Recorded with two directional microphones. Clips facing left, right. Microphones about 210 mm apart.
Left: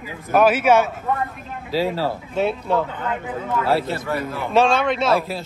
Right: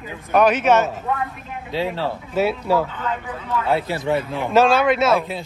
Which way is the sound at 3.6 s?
Centre (ahead or behind).